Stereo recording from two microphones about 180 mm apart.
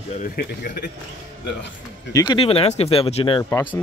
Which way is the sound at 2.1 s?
25° left (ahead or behind).